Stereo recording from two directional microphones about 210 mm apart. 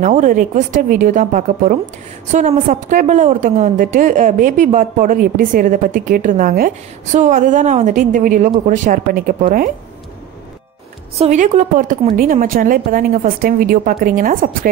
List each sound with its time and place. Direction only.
0.0 s a woman's voice: 40° right (ahead or behind)
11.1 s a woman's voice: 35° right (ahead or behind)